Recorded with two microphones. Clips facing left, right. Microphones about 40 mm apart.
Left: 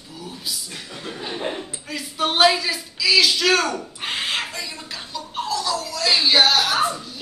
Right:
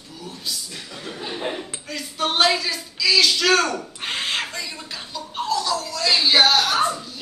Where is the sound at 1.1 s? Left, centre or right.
Centre.